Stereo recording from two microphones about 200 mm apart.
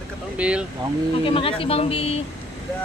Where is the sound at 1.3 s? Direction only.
25° left (ahead or behind).